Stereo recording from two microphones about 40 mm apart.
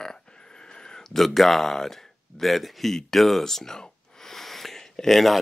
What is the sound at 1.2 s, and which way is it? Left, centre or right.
Speech, centre.